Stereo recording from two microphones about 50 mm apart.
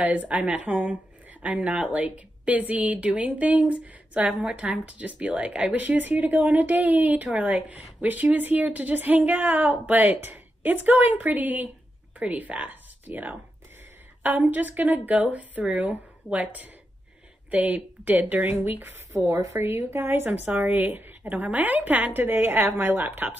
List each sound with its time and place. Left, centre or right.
0.0 s a woman's voice: right
4.4 s a woman's voice: centre
4.6 s speech: right
5.8 s a woman's voice: right
19.8 s a woman's voice: right
20.3 s a woman's voice: right